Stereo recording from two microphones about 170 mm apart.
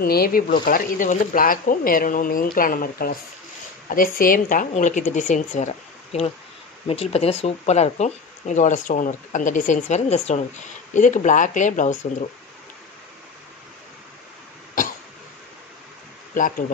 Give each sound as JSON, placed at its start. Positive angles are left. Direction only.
{"t": 0.0, "sound": "speech", "side_deg": 60}